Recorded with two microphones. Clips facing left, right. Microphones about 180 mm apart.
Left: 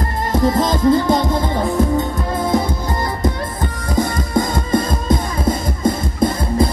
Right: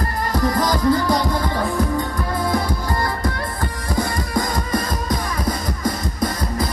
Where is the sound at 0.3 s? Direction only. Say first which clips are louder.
Left 4 dB; 25° left (ahead or behind).